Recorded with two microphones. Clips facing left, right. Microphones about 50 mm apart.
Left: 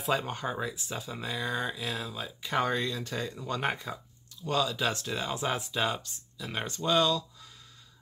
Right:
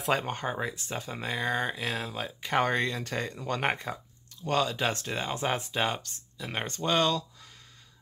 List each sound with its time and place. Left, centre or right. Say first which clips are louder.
0.1 s speech: right 1 dB; right